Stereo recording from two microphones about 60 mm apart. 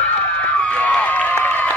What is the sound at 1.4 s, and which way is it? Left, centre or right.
Applause, left.